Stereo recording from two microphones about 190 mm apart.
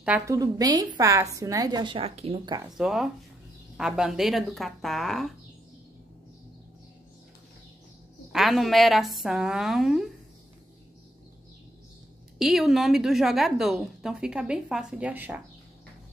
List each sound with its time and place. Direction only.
0.0 s a woman's voice: 5° right (ahead or behind)
0.4 s a woman's voice: 20° right (ahead or behind)
2.6 s a woman's voice: centre (ahead or behind)
8.3 s a woman's voice: centre (ahead or behind)
12.4 s a woman's voice: centre (ahead or behind)